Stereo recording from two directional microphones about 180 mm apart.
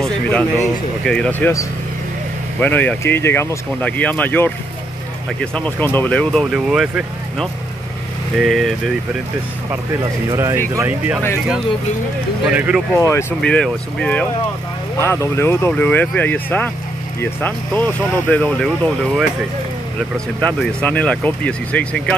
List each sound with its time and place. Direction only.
0.0 s speech: 10° left (ahead or behind)
2.6 s speech: 10° left (ahead or behind)
10.3 s speech: 15° right (ahead or behind)
12.4 s speech: 10° right (ahead or behind)
12.9 s speech: 10° left (ahead or behind)
20.3 s speech: 5° left (ahead or behind)